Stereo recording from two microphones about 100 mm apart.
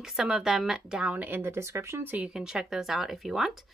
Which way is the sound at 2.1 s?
5° right (ahead or behind).